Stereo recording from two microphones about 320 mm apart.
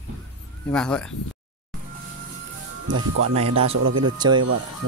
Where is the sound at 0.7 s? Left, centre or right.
Centre.